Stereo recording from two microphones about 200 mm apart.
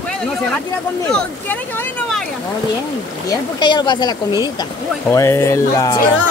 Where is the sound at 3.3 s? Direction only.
20° left (ahead or behind).